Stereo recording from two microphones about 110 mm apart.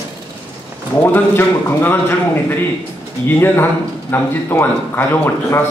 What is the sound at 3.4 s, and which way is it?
Speech, 20° left (ahead or behind).